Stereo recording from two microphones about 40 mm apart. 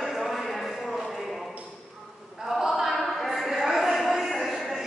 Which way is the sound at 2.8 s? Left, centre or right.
Centre.